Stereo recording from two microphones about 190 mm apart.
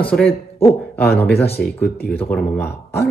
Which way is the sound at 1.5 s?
55° left (ahead or behind).